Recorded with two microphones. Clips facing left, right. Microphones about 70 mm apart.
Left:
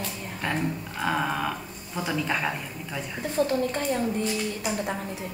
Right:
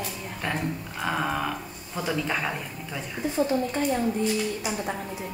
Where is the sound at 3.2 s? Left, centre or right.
Left.